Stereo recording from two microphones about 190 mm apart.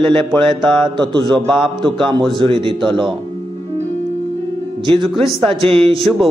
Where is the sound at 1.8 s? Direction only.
25° right (ahead or behind).